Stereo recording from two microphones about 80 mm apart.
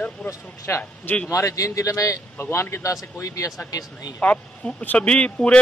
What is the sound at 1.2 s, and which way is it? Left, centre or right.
Speech, left.